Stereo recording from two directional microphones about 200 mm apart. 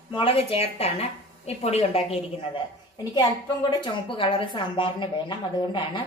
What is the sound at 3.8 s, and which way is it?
A woman's voice, 25° left (ahead or behind).